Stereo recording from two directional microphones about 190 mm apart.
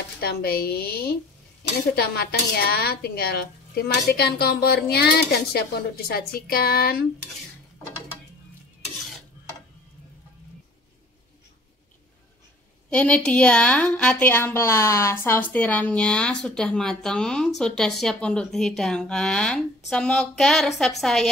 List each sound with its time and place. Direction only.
0.2 s speech: 55° left (ahead or behind)
12.9 s a woman's voice: 5° left (ahead or behind)